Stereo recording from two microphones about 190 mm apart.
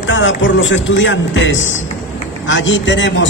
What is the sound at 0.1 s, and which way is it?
A man's voice, 80° left.